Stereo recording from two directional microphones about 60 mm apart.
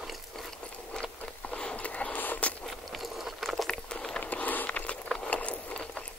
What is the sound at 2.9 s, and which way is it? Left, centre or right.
Vehicle, centre.